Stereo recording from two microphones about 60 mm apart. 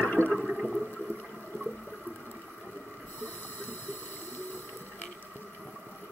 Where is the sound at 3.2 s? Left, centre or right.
Left.